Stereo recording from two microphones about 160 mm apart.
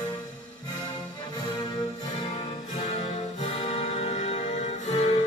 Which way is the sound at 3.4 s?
40° left (ahead or behind).